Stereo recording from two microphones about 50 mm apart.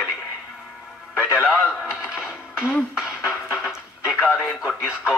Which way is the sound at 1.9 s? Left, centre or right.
Centre.